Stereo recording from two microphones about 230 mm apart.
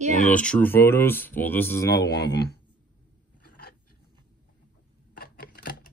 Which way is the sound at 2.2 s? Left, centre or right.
Left.